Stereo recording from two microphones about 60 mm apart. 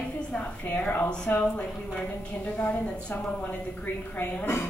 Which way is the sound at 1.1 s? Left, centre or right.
Centre.